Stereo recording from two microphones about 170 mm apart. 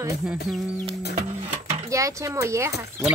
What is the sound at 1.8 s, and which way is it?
Speech, 20° right (ahead or behind).